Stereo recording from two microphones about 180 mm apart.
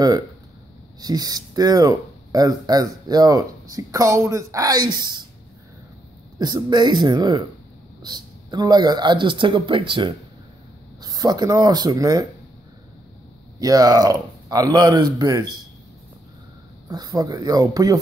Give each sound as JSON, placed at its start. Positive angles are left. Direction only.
{"t": 1.0, "sound": "speech", "side_deg": -20}
{"t": 6.3, "sound": "speech", "side_deg": -25}
{"t": 13.6, "sound": "speech", "side_deg": -20}
{"t": 16.9, "sound": "speech", "side_deg": -20}